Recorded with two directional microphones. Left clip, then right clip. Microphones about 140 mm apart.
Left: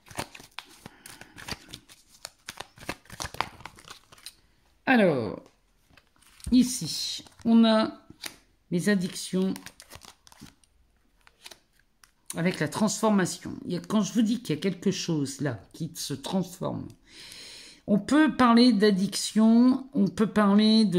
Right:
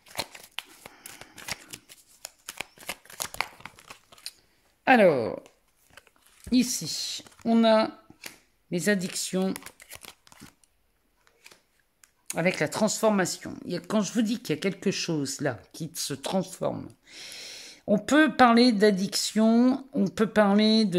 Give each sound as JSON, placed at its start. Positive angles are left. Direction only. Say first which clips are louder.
{"t": 0.9, "sound": "shuffling cards", "louder": "even", "side_deg": -25}
{"t": 2.8, "sound": "shuffling cards", "louder": "even", "side_deg": -15}
{"t": 3.6, "sound": "crumpling", "louder": "even", "side_deg": 0}
{"t": 4.8, "sound": "speech", "louder": "right 4 dB", "side_deg": -35}
{"t": 6.5, "sound": "speech", "louder": "left 1 dB", "side_deg": -25}
{"t": 9.5, "sound": "crumpling", "louder": "right 1 dB", "side_deg": -15}
{"t": 12.3, "sound": "speech", "louder": "right 4 dB", "side_deg": -25}
{"t": 17.0, "sound": "speech", "louder": "right 3 dB", "side_deg": -45}